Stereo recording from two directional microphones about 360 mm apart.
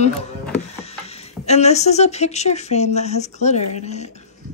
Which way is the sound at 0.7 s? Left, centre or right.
Centre.